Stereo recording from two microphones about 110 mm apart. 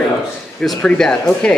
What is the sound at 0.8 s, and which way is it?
Speech, 10° left (ahead or behind).